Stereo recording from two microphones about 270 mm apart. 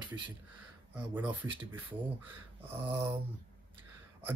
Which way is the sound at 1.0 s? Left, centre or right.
Centre.